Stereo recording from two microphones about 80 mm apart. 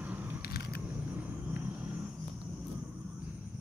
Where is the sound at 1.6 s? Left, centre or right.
Centre.